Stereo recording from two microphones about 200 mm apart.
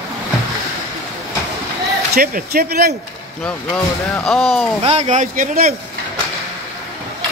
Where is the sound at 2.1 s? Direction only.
50° right (ahead or behind).